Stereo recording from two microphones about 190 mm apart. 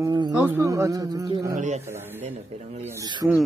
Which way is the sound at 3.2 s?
10° right (ahead or behind).